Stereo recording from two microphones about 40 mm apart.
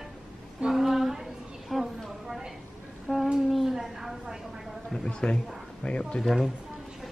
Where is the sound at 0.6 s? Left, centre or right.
Centre.